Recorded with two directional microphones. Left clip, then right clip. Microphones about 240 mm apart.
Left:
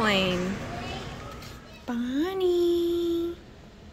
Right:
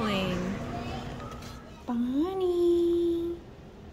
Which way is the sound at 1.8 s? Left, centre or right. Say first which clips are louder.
Left 1 dB; centre.